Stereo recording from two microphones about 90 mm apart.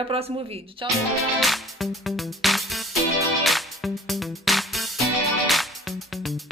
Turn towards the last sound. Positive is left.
turn(degrees=0)  # may be behind; listen again after turning